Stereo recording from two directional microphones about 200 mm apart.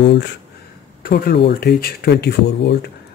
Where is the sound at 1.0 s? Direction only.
45° left (ahead or behind).